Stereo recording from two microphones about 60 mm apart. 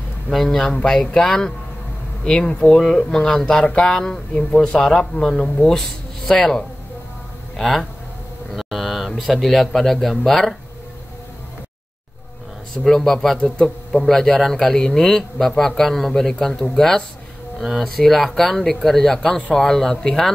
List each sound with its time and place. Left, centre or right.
0.3 s a man's voice: centre
4.3 s speech: left
4.6 s a man's voice: centre
12.8 s speech: centre
13.4 s a man's voice: centre
14.0 s a man's voice: centre
17.6 s a man's voice: centre